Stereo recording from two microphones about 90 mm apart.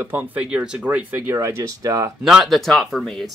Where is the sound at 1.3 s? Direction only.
35° right (ahead or behind).